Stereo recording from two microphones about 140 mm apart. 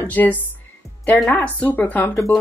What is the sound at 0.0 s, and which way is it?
Speech, 10° left (ahead or behind).